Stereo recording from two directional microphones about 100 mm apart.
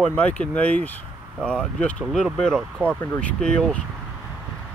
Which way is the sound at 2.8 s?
20° right (ahead or behind).